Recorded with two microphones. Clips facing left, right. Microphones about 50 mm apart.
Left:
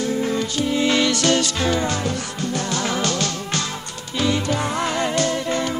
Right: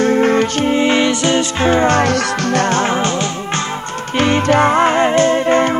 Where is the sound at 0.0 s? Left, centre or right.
Right.